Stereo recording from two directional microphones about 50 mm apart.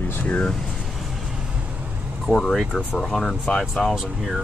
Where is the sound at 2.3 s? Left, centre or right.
Centre.